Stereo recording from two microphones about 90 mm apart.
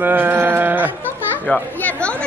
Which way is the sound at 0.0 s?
20° right (ahead or behind).